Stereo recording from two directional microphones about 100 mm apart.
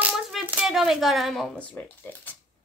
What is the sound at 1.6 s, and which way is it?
Speech, 15° left (ahead or behind).